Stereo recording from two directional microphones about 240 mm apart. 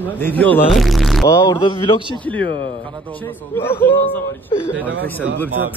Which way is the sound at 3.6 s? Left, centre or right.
Centre.